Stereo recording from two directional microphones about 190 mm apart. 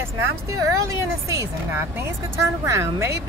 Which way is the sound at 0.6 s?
15° right (ahead or behind).